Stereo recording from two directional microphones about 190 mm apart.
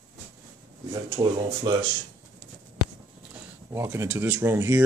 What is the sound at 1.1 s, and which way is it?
Speech, 25° right (ahead or behind).